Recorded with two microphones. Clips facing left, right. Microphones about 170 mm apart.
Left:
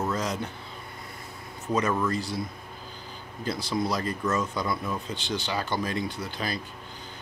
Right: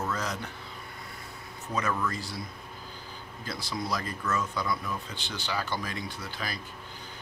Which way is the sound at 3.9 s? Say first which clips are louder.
Left 4 dB; 35° left (ahead or behind).